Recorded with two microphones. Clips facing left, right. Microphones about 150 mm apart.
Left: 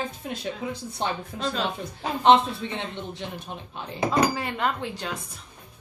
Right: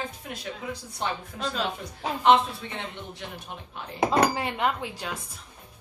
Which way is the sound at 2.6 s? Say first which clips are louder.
Left 5 dB; 20° left (ahead or behind).